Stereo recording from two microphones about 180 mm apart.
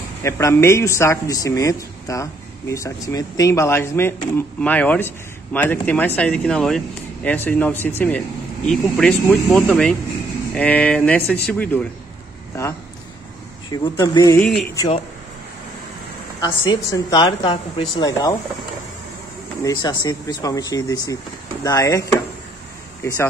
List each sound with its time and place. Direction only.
0.2 s speech: 15° left (ahead or behind)
13.7 s a woman's voice: 20° left (ahead or behind)
14.4 s speech: 5° left (ahead or behind)
16.3 s a woman's voice: 25° left (ahead or behind)
19.6 s a woman's voice: 25° left (ahead or behind)